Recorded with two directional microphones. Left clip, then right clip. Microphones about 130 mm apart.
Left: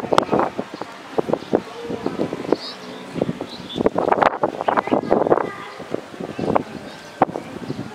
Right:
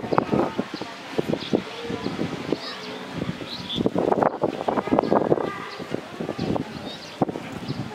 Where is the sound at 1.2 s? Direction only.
40° left (ahead or behind).